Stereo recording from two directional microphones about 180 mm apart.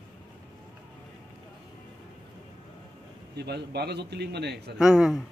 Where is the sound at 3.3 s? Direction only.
65° right (ahead or behind).